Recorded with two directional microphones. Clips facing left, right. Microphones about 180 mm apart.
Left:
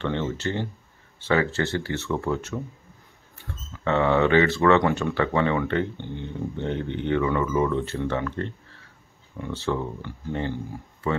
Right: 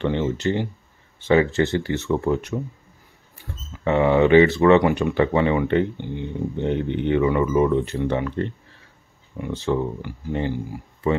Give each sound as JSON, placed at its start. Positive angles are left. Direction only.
{"t": 0.0, "sound": "speech", "side_deg": -15}